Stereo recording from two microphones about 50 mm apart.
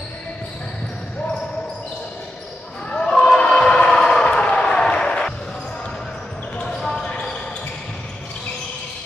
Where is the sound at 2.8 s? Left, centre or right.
Left.